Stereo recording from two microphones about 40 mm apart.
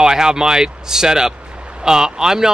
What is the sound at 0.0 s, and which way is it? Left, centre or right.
Speech, centre.